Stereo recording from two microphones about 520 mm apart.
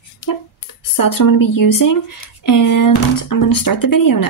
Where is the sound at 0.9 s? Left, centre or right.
Left.